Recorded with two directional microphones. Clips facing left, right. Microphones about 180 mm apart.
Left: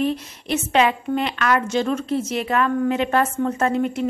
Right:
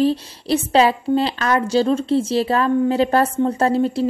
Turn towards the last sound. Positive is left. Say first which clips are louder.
# right 3 dB
turn(degrees=-30)  # may be behind; listen again after turning